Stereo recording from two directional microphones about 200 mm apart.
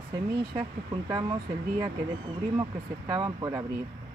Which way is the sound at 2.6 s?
20° right (ahead or behind).